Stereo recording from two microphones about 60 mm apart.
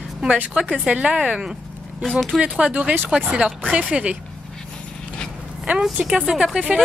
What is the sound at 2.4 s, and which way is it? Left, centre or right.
Speech, centre.